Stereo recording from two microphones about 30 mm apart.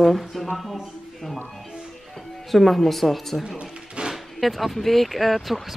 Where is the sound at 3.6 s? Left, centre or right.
Right.